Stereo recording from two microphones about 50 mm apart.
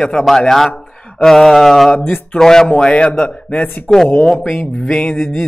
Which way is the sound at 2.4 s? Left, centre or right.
Centre.